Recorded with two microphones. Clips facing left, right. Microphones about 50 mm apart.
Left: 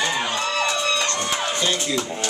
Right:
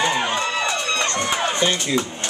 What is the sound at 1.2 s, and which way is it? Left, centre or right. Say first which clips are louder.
Music: right 3 dB; right.